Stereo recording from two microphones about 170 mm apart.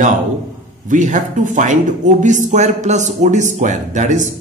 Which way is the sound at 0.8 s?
50° right (ahead or behind).